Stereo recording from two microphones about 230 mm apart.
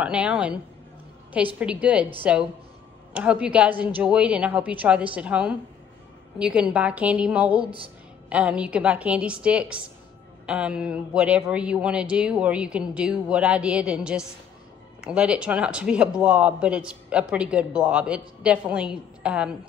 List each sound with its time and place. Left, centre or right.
0.0 s a man's voice: centre
1.6 s a man's voice: centre
7.6 s speech: right
8.3 s a man's voice: centre